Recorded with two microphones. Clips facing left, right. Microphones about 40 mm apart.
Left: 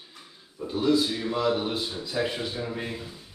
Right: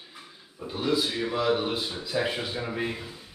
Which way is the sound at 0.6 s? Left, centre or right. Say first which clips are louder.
Left 3 dB; centre.